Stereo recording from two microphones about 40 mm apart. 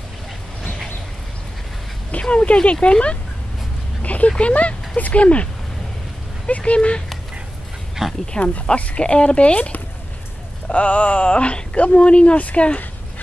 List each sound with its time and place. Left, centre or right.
2.2 s speech: left
4.0 s a sound: left
4.4 s speech: left
8.0 s speech: centre
8.7 s speech: left
10.7 s speech: left